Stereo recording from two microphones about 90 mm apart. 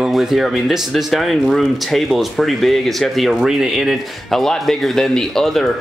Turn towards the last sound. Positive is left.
turn(degrees=5)  # may be behind; listen again after turning